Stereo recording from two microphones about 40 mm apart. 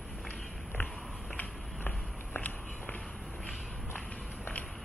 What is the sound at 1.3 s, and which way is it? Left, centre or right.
Walk, left.